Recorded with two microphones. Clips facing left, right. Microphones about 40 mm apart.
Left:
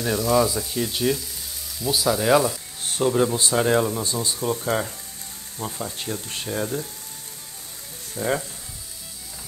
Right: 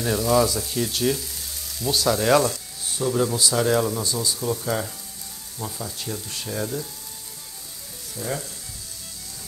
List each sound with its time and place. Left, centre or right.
0.0 s speech: centre
2.8 s a sound: left
3.3 s speech: left
4.0 s speech: left; by 6.7 s centre
8.1 s frying: left